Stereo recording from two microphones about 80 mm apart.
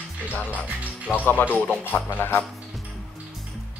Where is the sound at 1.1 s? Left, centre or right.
Left.